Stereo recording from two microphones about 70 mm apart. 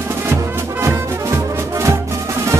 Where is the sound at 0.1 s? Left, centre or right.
Right.